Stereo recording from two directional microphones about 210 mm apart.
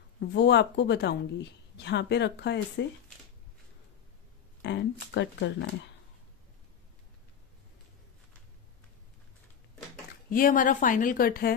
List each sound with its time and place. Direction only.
0.2 s speech: 55° left (ahead or behind)
4.6 s speech: 55° left (ahead or behind)
10.3 s a woman's voice: 40° left (ahead or behind)